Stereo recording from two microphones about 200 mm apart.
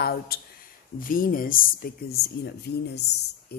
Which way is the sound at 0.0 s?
50° left (ahead or behind).